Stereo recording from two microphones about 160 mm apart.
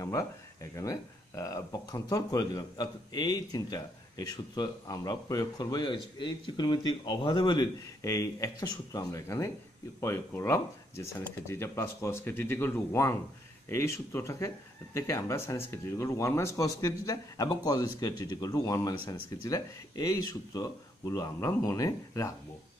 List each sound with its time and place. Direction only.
0.0 s speech: 20° left (ahead or behind)